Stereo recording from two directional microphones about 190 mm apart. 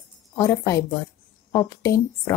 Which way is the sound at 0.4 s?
15° left (ahead or behind).